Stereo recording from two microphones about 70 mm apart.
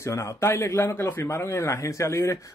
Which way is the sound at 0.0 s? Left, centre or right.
Left.